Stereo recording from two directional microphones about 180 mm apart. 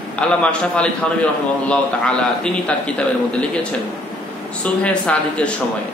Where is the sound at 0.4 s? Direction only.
5° left (ahead or behind).